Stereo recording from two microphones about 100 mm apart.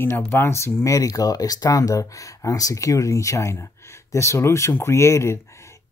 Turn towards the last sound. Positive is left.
turn(degrees=25)  # may be behind; listen again after turning